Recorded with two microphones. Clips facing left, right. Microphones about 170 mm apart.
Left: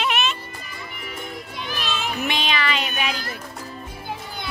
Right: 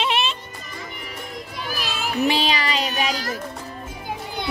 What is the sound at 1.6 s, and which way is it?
Children playing, 5° right (ahead or behind).